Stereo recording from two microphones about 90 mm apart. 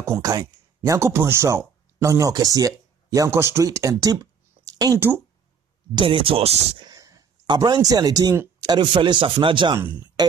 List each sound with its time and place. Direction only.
0.0 s speech: 40° right (ahead or behind)
4.9 s speech: 25° right (ahead or behind)
5.9 s speech: 75° right (ahead or behind)
6.9 s a sound: 40° right (ahead or behind)
7.4 s speech: 50° right (ahead or behind)
8.7 s speech: 60° right (ahead or behind)